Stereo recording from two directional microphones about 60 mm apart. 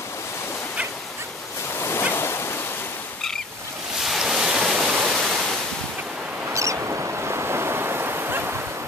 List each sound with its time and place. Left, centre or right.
1.8 s waves: left
4.0 s waves: centre
5.0 s waterfall: centre
6.5 s waves: right